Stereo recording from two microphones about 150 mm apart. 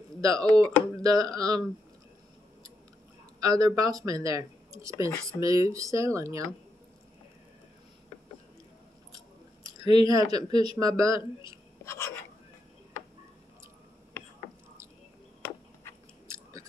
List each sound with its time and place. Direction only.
0.2 s speech: 20° right (ahead or behind)
3.3 s speech: 25° right (ahead or behind)
9.8 s speech: 25° right (ahead or behind)
11.8 s a sound: 20° left (ahead or behind)